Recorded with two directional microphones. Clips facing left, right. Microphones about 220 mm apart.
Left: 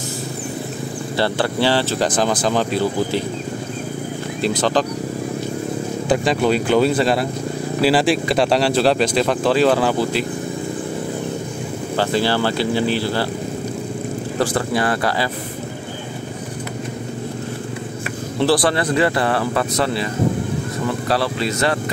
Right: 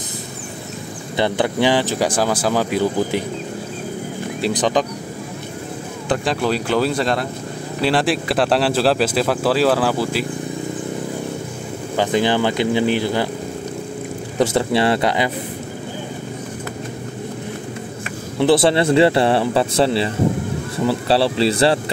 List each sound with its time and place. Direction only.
1.1 s speech: 15° right (ahead or behind)
4.4 s speech: 15° right (ahead or behind)
6.0 s speech: 5° left (ahead or behind)
12.0 s speech: 15° right (ahead or behind)
14.4 s speech: 25° right (ahead or behind)
18.4 s speech: 25° right (ahead or behind)
21.1 s speech: 30° right (ahead or behind)